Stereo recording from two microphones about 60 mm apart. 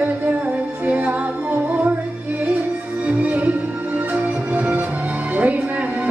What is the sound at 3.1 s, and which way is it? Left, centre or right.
Music, right.